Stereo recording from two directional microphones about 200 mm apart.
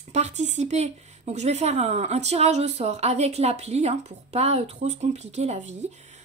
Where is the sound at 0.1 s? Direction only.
35° right (ahead or behind).